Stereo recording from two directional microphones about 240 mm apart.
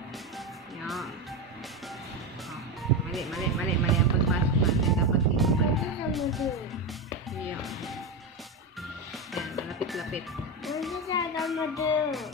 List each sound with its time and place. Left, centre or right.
0.8 s music: centre
2.8 s music: centre
7.6 s speech: centre
9.3 s music: centre
11.3 s speech: centre